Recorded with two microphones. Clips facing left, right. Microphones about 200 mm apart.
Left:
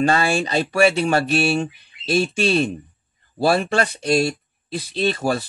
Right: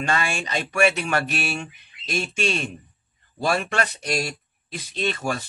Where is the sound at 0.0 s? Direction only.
35° left (ahead or behind).